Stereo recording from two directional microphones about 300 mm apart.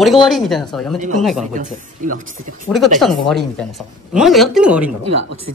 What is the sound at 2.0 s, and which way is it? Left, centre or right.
Speech, right.